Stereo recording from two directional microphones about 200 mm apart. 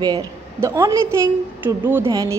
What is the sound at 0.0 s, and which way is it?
A woman's voice, 20° right (ahead or behind).